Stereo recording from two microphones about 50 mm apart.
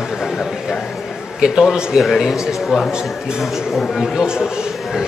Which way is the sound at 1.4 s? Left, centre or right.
Centre.